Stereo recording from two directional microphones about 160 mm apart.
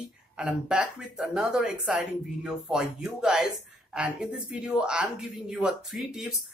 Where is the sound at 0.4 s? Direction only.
5° right (ahead or behind).